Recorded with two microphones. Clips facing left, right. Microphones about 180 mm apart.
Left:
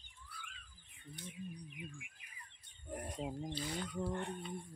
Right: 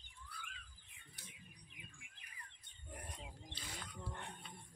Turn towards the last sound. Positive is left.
turn(degrees=40)  # may be behind; listen again after turning